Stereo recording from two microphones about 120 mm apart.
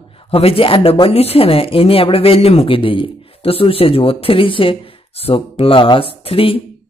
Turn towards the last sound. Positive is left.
turn(degrees=50)  # may be behind; listen again after turning